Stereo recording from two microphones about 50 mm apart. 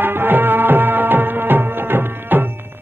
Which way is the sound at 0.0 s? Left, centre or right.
Right.